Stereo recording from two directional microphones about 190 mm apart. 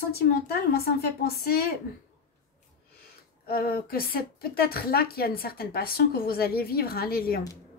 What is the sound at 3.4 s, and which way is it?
A woman's voice, 50° left (ahead or behind).